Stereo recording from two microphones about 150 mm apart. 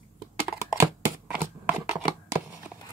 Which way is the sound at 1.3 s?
10° right (ahead or behind).